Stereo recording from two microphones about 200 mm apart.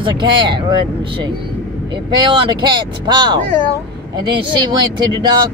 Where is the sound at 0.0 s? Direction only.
25° right (ahead or behind).